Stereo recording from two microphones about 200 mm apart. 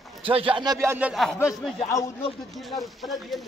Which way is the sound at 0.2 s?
25° right (ahead or behind).